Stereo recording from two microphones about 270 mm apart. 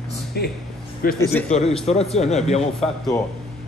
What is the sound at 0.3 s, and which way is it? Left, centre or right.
A man's voice, left.